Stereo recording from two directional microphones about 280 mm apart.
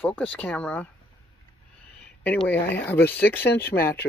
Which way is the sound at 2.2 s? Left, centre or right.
Centre.